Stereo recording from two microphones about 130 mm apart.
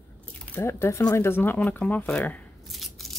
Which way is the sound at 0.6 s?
20° left (ahead or behind).